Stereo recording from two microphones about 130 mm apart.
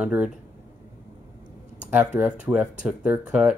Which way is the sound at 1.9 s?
15° right (ahead or behind).